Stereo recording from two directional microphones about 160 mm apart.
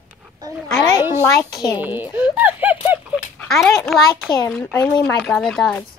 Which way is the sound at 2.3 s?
10° right (ahead or behind).